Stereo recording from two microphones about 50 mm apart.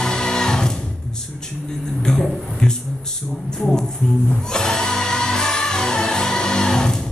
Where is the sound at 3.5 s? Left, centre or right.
Centre.